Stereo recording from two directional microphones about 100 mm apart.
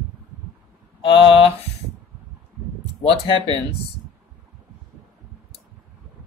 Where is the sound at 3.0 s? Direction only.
65° left (ahead or behind).